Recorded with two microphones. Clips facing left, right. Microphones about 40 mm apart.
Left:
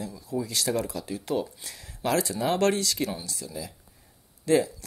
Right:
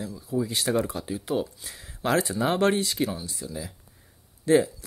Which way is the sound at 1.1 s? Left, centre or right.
Centre.